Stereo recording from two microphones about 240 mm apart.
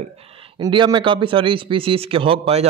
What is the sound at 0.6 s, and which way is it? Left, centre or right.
A man's voice, centre.